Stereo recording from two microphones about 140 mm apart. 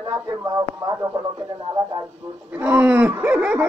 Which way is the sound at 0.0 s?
20° right (ahead or behind).